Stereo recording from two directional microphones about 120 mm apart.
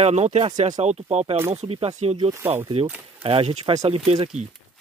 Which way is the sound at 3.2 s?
55° right (ahead or behind).